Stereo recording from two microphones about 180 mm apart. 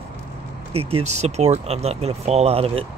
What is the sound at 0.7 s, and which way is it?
Speech, 35° right (ahead or behind).